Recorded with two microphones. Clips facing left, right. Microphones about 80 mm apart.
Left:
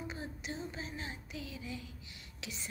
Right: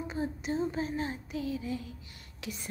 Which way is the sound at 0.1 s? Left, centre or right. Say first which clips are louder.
Right 9 dB; right.